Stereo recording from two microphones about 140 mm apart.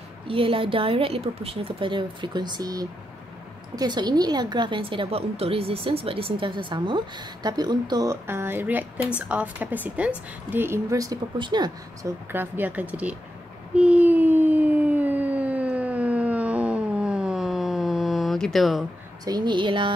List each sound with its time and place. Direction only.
0.3 s a woman's voice: 40° right (ahead or behind)
12.3 s speech: 15° right (ahead or behind)
13.7 s a sound: 10° right (ahead or behind)
19.2 s a woman's voice: 30° right (ahead or behind)